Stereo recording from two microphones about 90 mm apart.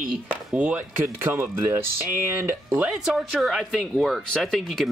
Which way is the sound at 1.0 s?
30° right (ahead or behind).